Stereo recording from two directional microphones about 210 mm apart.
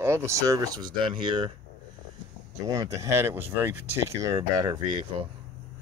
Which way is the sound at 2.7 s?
15° right (ahead or behind).